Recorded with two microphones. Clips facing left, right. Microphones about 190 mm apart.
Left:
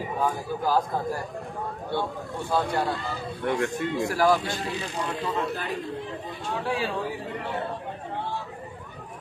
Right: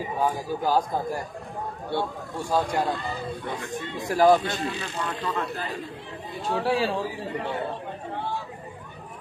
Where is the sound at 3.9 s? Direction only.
20° right (ahead or behind).